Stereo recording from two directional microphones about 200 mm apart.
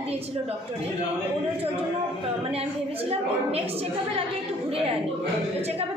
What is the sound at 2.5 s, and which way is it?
A woman's voice, 30° right (ahead or behind).